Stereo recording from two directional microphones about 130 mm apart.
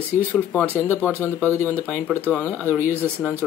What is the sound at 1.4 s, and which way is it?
Speech, 15° left (ahead or behind).